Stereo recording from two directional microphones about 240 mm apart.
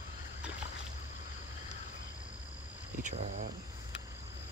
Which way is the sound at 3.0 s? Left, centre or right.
Right.